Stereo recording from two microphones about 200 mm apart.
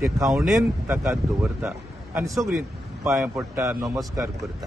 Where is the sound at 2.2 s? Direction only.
15° right (ahead or behind).